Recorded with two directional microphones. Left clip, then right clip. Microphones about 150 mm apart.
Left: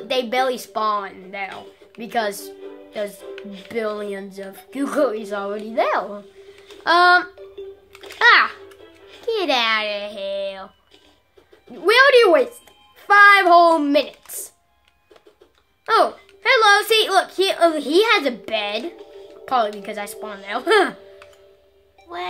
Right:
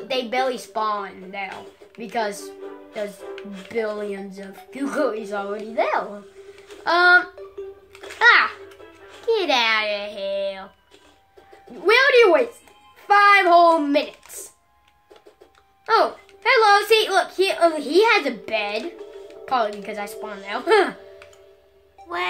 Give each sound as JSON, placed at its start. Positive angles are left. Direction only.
{"t": 0.1, "sound": "a woman's voice", "side_deg": 55}
{"t": 2.9, "sound": "music", "side_deg": 60}
{"t": 3.7, "sound": "a woman's voice", "side_deg": 60}
{"t": 8.2, "sound": "music", "side_deg": 55}
{"t": 9.2, "sound": "speech", "side_deg": 45}
{"t": 11.8, "sound": "a child's voice", "side_deg": 50}
{"t": 15.8, "sound": "speech", "side_deg": 50}
{"t": 22.1, "sound": "speech", "side_deg": -45}